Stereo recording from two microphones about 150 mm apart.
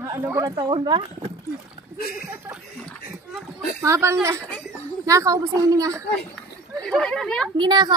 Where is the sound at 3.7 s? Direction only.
20° right (ahead or behind).